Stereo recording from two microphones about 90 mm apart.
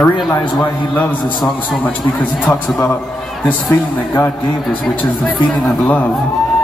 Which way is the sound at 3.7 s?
35° left (ahead or behind).